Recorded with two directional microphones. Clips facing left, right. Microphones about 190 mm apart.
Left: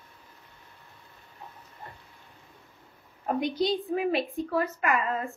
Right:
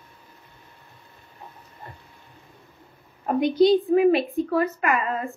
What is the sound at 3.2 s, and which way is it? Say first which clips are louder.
A woman's voice: right 9 dB; 60° right (ahead or behind).